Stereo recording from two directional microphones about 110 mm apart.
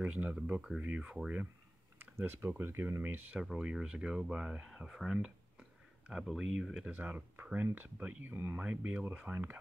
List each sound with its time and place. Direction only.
0.0 s speech: 15° right (ahead or behind)
3.4 s speech: 5° right (ahead or behind)
6.9 s speech: 15° right (ahead or behind)